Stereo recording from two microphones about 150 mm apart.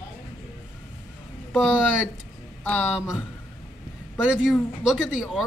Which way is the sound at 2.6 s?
15° left (ahead or behind).